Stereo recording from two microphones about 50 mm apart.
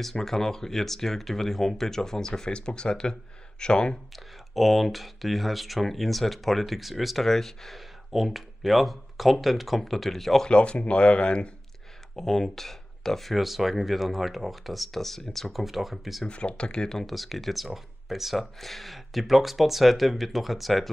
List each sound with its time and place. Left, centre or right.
0.0 s speech: centre
4.6 s speech: centre
10.5 s speech: left
12.2 s speech: centre
16.3 s speech: left
17.0 s speech: centre